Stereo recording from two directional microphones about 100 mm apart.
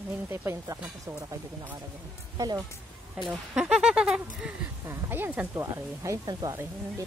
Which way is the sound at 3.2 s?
5° right (ahead or behind).